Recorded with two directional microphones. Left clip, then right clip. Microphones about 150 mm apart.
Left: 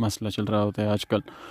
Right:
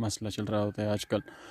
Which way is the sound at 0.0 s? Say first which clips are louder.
Left 6 dB; 35° left (ahead or behind).